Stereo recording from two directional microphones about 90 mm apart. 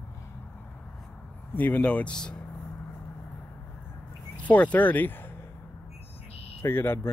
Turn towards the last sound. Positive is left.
turn(degrees=25)  # may be behind; listen again after turning